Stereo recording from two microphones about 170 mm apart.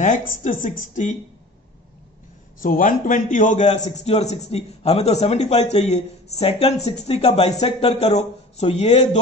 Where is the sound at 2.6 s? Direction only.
55° left (ahead or behind).